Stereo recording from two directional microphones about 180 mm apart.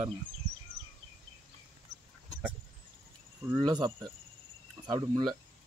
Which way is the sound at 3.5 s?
20° right (ahead or behind).